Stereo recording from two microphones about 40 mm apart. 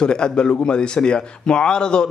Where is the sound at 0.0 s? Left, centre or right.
Left.